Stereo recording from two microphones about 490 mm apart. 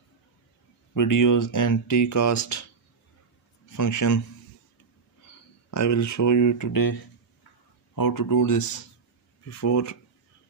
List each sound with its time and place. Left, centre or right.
0.9 s speech: left
3.7 s speech: left
5.7 s speech: left